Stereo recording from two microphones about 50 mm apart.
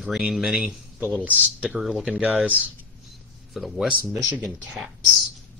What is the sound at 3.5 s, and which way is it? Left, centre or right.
Speech, centre.